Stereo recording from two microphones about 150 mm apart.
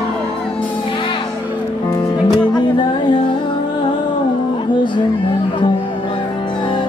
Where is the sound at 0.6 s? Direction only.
35° left (ahead or behind).